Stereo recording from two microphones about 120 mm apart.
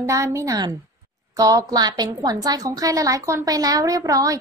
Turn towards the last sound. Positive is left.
turn(degrees=-30)  # may be behind; listen again after turning